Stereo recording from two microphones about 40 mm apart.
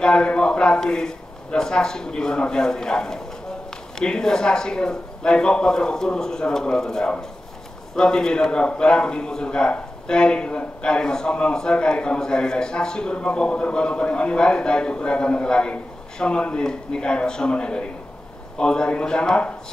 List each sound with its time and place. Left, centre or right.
0.0 s speech: left